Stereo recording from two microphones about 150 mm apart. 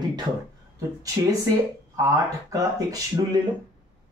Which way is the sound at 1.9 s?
20° right (ahead or behind).